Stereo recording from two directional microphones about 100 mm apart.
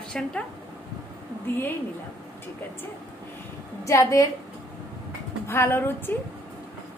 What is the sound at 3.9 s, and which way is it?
Speech, 30° left (ahead or behind).